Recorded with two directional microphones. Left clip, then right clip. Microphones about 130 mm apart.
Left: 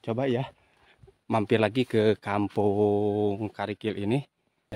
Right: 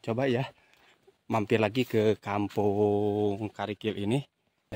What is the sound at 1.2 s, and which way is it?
Speech, 40° left (ahead or behind).